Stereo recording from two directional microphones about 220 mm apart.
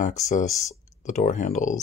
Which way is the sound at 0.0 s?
35° left (ahead or behind).